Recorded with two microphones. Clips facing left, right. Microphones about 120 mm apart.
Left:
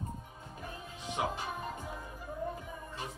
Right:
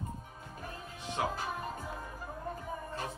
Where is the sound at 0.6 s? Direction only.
35° right (ahead or behind).